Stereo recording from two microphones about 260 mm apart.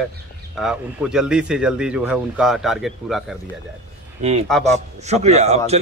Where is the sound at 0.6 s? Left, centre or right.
Centre.